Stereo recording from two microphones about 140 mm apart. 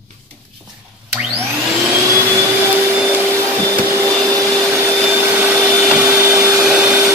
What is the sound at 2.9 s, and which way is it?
Vacuum cleaner, 10° right (ahead or behind).